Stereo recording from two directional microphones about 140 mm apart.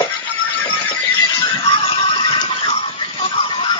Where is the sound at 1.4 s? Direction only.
35° left (ahead or behind).